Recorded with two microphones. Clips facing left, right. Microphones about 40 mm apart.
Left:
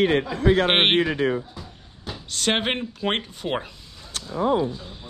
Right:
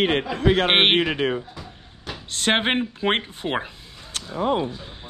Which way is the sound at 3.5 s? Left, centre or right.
Centre.